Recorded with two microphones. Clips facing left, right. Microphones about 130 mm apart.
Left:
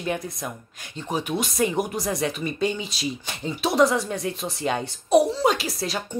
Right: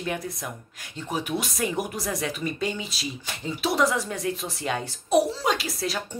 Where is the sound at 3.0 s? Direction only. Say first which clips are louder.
Left 4 dB; 25° left (ahead or behind).